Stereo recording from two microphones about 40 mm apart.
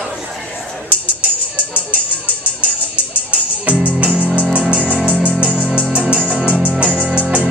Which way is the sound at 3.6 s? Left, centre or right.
Right.